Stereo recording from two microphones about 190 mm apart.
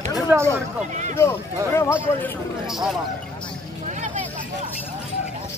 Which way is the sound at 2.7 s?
Centre (ahead or behind).